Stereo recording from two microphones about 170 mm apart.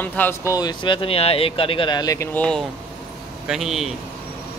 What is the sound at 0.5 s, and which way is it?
Speech, 25° left (ahead or behind).